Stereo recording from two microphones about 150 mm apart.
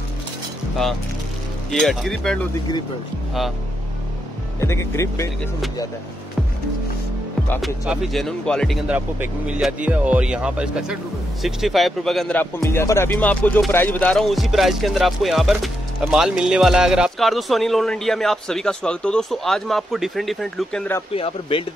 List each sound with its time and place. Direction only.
1.7 s speech: centre (ahead or behind)
4.6 s speech: 20° left (ahead or behind)
7.6 s speech: centre (ahead or behind)
8.8 s speech: 10° right (ahead or behind)
12.4 s speech: 15° left (ahead or behind)
21.1 s speech: 40° left (ahead or behind)